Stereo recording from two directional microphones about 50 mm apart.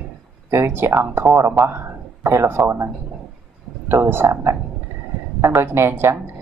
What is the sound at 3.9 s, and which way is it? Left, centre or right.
Speech, right.